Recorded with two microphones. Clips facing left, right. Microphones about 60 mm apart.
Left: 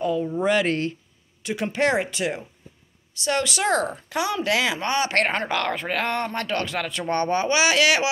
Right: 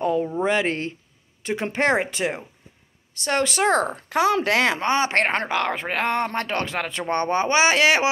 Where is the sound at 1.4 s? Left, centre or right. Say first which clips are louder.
Even; right.